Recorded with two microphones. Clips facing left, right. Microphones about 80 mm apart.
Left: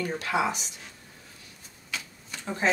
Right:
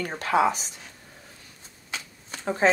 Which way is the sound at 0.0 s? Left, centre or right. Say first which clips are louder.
Right 4 dB; right.